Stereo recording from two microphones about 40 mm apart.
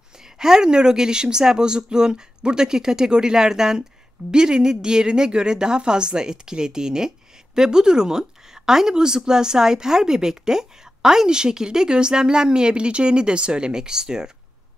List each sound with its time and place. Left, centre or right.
0.4 s a woman's voice: centre